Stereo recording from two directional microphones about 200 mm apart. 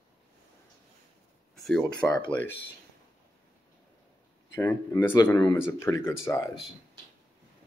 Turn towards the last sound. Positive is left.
turn(degrees=15)  # may be behind; listen again after turning